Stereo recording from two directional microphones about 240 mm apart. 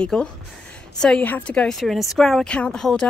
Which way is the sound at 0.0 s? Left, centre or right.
Centre.